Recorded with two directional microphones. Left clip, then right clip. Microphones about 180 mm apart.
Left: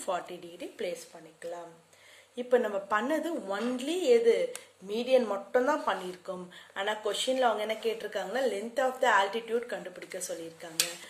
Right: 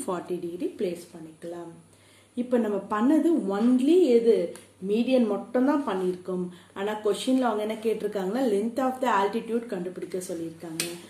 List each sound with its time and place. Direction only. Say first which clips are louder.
0.0 s speech: right 3 dB; 10° left (ahead or behind)
2.3 s speech: right 1 dB; 10° left (ahead or behind)